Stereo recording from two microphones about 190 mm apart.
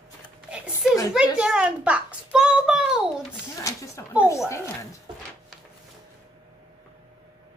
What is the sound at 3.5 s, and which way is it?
Speech, 15° left (ahead or behind).